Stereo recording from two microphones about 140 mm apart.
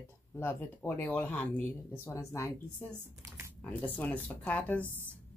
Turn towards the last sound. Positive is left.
turn(degrees=10)  # may be behind; listen again after turning